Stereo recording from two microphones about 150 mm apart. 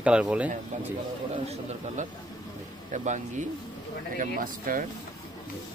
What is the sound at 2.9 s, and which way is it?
Speech, 50° right (ahead or behind).